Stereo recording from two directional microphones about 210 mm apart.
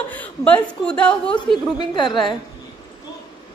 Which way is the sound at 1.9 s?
20° left (ahead or behind).